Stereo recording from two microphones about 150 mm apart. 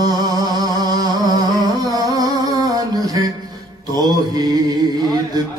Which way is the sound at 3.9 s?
25° right (ahead or behind).